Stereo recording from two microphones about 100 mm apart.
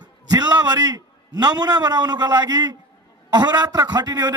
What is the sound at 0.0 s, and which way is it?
A man's voice, 45° right (ahead or behind).